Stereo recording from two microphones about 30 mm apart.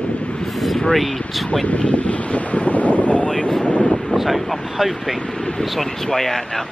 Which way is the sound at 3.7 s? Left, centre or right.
Left.